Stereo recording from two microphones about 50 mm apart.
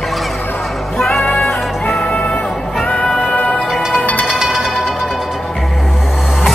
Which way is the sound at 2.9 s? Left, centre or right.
Centre.